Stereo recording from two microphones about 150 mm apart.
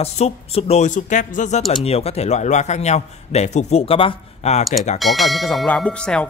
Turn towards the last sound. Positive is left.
turn(degrees=5)  # may be behind; listen again after turning